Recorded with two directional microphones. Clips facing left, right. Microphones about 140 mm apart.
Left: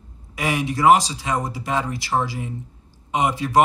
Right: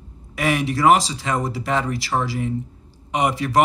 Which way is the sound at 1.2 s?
20° left (ahead or behind).